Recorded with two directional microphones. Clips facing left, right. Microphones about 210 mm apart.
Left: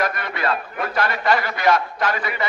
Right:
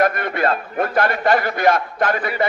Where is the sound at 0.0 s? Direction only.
50° right (ahead or behind).